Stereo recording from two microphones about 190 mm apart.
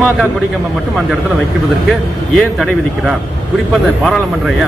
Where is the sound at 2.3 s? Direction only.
Centre (ahead or behind).